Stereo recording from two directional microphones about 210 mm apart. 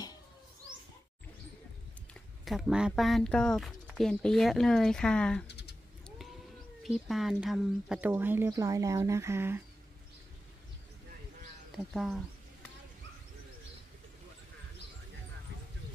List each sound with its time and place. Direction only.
2.4 s speech: centre (ahead or behind)
5.5 s typing: 55° left (ahead or behind)
6.8 s speech: centre (ahead or behind)
11.7 s speech: centre (ahead or behind)